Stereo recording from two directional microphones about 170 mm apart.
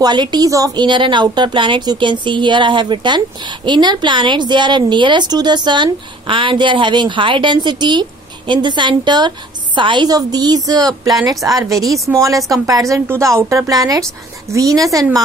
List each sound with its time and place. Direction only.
0.0 s a woman's voice: 25° right (ahead or behind)